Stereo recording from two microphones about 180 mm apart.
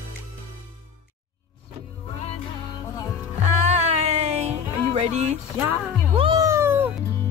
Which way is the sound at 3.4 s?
40° right (ahead or behind).